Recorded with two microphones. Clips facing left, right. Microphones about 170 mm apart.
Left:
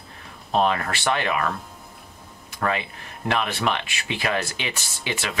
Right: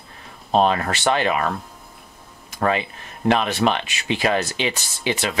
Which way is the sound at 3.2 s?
25° right (ahead or behind).